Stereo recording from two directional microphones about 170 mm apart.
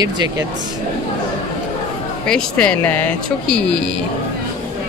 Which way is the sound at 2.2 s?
5° left (ahead or behind).